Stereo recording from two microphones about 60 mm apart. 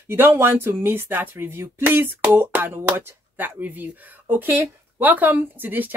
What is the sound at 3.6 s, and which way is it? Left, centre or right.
Speech, right.